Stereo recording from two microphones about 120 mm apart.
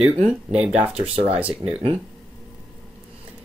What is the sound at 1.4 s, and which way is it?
Speech, 10° right (ahead or behind).